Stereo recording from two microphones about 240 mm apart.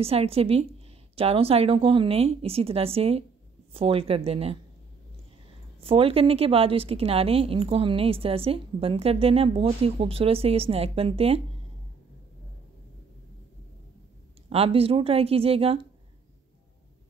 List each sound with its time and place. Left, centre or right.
0.0 s a woman's voice: right
5.8 s a woman's voice: right
14.5 s a woman's voice: right